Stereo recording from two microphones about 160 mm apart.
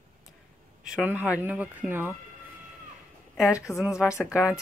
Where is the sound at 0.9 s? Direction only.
10° right (ahead or behind).